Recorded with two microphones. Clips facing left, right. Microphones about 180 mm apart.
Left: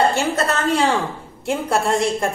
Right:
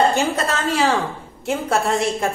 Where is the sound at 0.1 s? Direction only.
15° right (ahead or behind).